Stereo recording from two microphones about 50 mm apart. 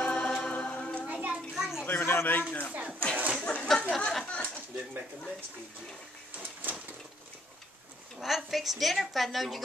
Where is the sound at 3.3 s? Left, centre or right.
Centre.